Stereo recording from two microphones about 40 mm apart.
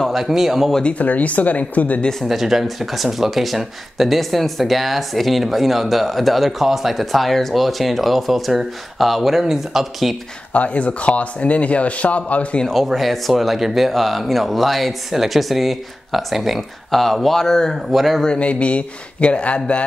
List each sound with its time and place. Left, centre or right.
0.1 s speech: centre
0.9 s a man's voice: left
2.2 s speech: centre
10.5 s a man's voice: left
12.8 s speech: centre
17.9 s speech: centre
18.4 s a man's voice: left